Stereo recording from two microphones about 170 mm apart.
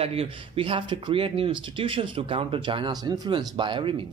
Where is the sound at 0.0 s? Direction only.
35° right (ahead or behind).